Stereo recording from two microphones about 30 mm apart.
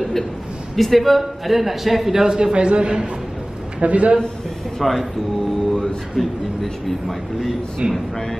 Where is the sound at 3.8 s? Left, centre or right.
Right.